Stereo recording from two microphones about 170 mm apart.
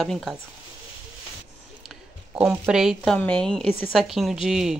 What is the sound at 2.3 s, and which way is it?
Speech, 5° right (ahead or behind).